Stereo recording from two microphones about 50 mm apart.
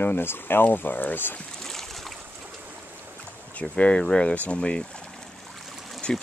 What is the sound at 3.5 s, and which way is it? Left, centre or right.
Speech, left.